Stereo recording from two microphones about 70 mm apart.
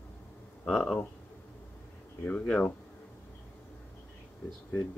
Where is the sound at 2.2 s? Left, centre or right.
Centre.